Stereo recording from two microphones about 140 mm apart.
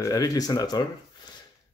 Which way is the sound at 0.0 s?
25° left (ahead or behind).